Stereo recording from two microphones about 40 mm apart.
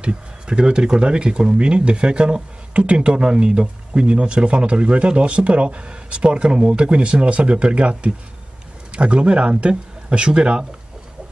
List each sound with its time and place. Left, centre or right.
0.0 s speech: right